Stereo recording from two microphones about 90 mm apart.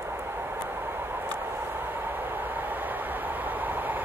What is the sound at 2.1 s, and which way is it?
Train, 20° right (ahead or behind).